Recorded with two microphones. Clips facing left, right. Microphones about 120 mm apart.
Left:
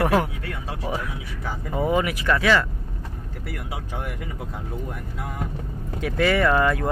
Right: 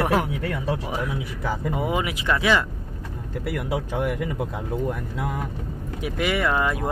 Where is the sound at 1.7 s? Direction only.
15° right (ahead or behind).